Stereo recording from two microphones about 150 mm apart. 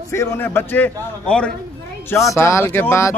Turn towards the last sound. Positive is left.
turn(degrees=15)  # may be behind; listen again after turning